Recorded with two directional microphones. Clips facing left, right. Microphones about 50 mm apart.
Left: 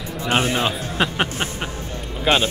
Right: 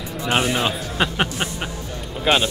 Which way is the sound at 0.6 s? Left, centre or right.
Centre.